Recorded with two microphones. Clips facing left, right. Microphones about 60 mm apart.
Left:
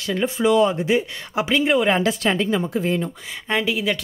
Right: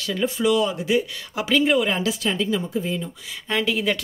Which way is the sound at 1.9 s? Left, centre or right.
Left.